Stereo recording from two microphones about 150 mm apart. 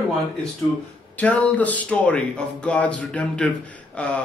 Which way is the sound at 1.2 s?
10° left (ahead or behind).